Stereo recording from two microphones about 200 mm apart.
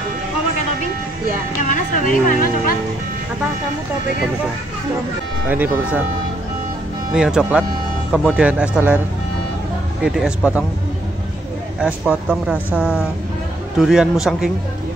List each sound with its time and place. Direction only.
1.6 s speech: 40° left (ahead or behind)
5.5 s speech: 10° right (ahead or behind)
7.2 s speech: 5° right (ahead or behind)
10.0 s speech: 5° right (ahead or behind)
11.8 s speech: 5° right (ahead or behind)